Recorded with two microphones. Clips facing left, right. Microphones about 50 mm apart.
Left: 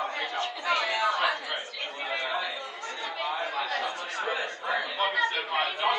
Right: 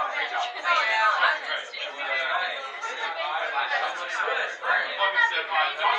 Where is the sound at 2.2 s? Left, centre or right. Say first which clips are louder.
Right 4 dB; centre.